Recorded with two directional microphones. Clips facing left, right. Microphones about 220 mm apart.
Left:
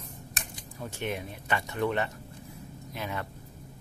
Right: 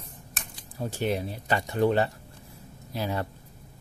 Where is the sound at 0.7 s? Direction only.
35° right (ahead or behind).